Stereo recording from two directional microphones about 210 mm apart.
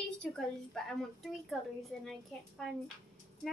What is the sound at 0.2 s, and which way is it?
A woman's voice, centre (ahead or behind).